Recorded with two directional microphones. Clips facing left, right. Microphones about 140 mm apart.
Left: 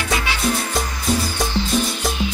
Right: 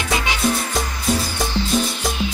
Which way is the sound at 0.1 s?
20° right (ahead or behind).